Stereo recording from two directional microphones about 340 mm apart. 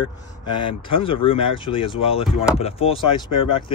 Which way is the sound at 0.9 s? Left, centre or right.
Centre.